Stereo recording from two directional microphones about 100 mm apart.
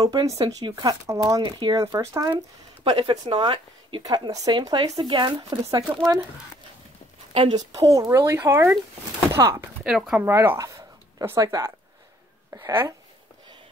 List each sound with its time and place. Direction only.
0.0 s speech: 35° right (ahead or behind)
1.4 s speech: 45° right (ahead or behind)
1.8 s speech: 35° right (ahead or behind)
2.8 s speech: 60° right (ahead or behind)
4.0 s speech: 40° right (ahead or behind)
5.6 s speech: 35° right (ahead or behind)
7.5 s speech: 35° right (ahead or behind)
9.3 s chopping: 30° right (ahead or behind)
9.8 s speech: 5° right (ahead or behind)
10.1 s speech: 20° right (ahead or behind)
10.6 s speech: 35° right (ahead or behind)